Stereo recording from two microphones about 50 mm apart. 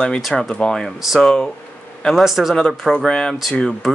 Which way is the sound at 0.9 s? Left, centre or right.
Centre.